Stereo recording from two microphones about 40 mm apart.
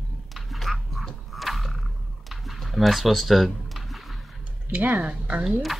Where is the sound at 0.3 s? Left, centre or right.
Centre.